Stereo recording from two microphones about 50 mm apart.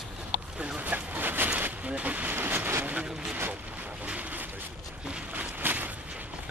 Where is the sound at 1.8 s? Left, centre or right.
Right.